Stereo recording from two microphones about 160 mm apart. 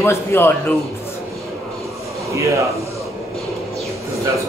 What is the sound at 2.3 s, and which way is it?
Speech, 20° right (ahead or behind).